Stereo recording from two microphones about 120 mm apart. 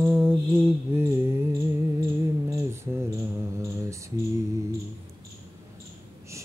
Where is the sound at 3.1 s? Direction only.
25° right (ahead or behind).